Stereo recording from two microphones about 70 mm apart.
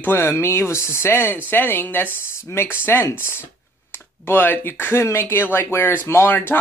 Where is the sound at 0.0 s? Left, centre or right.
Left.